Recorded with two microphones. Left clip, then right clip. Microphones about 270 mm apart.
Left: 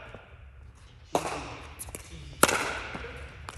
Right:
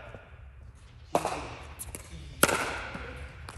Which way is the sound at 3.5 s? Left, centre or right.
Centre.